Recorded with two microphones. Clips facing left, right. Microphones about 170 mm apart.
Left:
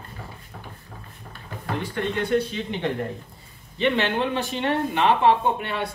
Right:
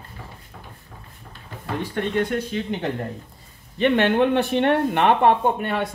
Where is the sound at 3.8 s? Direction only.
55° right (ahead or behind).